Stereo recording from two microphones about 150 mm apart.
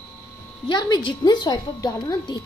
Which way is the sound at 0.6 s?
25° left (ahead or behind).